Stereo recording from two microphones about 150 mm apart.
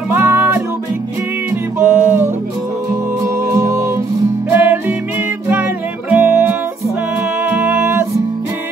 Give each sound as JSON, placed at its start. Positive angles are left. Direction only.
{"t": 0.1, "sound": "music", "side_deg": -15}
{"t": 1.8, "sound": "music", "side_deg": -10}
{"t": 3.5, "sound": "music", "side_deg": -25}